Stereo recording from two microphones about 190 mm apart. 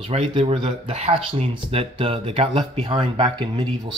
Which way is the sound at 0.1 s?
30° right (ahead or behind).